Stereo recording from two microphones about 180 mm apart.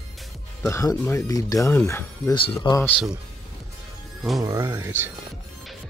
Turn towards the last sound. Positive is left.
turn(degrees=-15)  # may be behind; listen again after turning